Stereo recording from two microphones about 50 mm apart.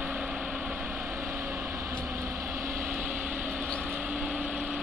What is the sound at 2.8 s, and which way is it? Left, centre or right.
Vehicle, right.